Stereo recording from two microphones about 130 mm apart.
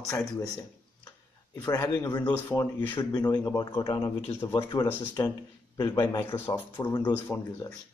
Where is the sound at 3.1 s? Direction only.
30° left (ahead or behind).